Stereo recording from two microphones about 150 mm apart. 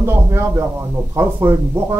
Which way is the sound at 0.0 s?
15° right (ahead or behind).